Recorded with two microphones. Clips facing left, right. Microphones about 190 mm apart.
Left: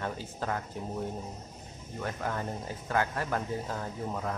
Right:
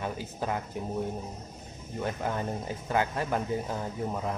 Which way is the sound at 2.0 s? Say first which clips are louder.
Right 3 dB; 20° right (ahead or behind).